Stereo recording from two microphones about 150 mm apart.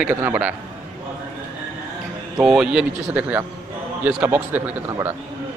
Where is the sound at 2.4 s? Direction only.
5° right (ahead or behind).